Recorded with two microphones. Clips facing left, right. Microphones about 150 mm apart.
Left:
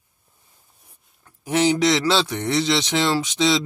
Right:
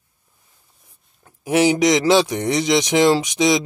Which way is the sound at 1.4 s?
10° right (ahead or behind).